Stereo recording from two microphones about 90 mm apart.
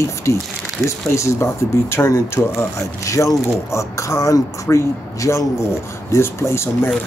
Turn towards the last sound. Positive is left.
turn(degrees=30)  # may be behind; listen again after turning